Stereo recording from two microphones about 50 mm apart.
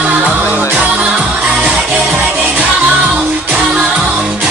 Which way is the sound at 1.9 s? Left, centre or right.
Right.